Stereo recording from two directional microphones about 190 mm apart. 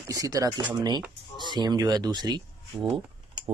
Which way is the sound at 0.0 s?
15° right (ahead or behind).